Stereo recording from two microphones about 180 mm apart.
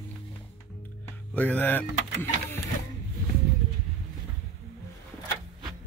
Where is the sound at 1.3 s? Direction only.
10° left (ahead or behind).